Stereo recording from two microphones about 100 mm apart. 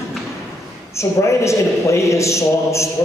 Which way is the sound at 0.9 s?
30° left (ahead or behind).